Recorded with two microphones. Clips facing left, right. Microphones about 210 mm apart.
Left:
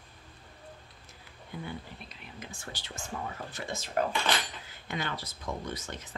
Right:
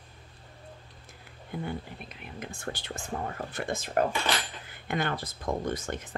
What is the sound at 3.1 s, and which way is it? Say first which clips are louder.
Speech: right 4 dB; 45° right (ahead or behind).